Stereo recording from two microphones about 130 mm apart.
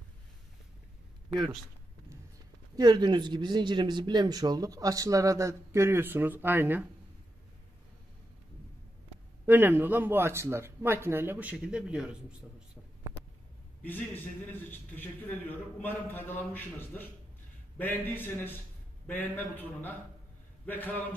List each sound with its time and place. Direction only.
2.7 s speech: 30° right (ahead or behind); by 6.9 s 15° right (ahead or behind)
9.5 s speech: 15° right (ahead or behind)
13.8 s a man's voice: 15° left (ahead or behind)